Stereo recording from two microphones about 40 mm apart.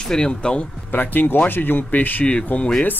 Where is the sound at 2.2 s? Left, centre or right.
Left.